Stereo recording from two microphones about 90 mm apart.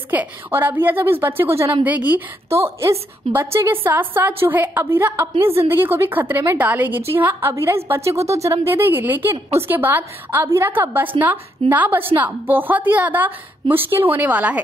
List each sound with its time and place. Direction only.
0.1 s a woman's voice: 20° right (ahead or behind)
2.5 s a woman's voice: 30° right (ahead or behind)